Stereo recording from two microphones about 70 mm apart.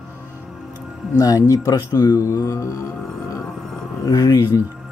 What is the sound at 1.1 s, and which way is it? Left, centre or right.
Speech, left.